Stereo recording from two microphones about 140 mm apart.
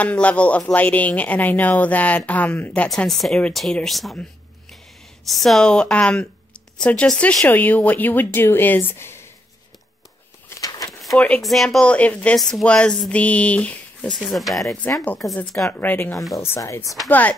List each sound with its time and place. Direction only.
0.0 s speech: 10° left (ahead or behind)
10.9 s speech: centre (ahead or behind)
14.7 s speech: 20° left (ahead or behind)
15.3 s speech: centre (ahead or behind)
15.8 s speech: 15° left (ahead or behind)